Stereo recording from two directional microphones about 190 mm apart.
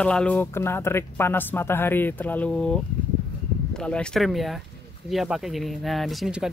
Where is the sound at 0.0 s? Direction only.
5° left (ahead or behind).